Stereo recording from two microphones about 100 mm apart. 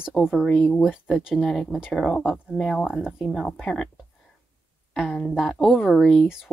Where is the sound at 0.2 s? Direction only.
Centre (ahead or behind).